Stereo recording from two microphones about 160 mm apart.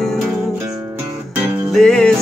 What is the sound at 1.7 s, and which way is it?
Music, 5° left (ahead or behind).